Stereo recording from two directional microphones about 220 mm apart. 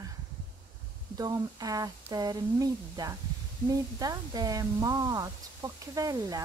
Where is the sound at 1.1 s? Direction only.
15° right (ahead or behind).